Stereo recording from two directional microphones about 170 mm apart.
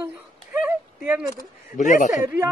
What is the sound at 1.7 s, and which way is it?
Speech, 45° left (ahead or behind).